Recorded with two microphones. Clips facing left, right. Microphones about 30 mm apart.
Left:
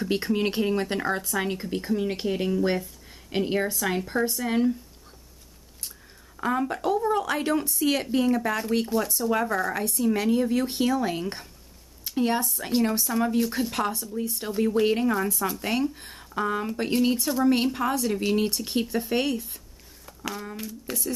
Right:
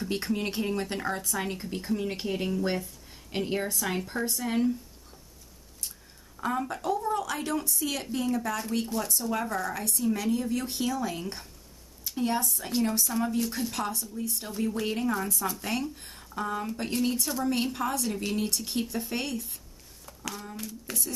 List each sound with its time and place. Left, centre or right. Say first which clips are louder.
0.0 s speech: left 5 dB; centre
5.9 s speech: left 2 dB; centre
8.8 s speech: left 5 dB; centre